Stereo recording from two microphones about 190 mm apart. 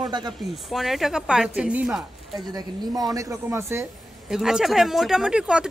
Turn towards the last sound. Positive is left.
turn(degrees=-5)  # may be behind; listen again after turning